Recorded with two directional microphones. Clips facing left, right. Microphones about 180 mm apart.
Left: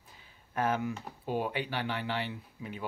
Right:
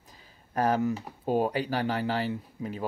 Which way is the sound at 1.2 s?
40° right (ahead or behind).